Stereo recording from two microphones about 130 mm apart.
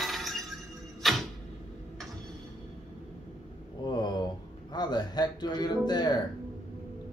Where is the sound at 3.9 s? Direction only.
35° left (ahead or behind).